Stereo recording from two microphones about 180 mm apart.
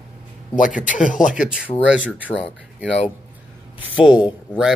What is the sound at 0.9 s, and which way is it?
Speech, 45° left (ahead or behind).